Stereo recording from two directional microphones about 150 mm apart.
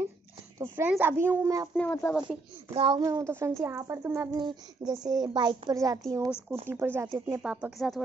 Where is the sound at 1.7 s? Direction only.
10° left (ahead or behind).